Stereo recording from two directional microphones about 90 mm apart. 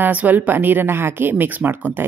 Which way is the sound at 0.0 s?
20° right (ahead or behind).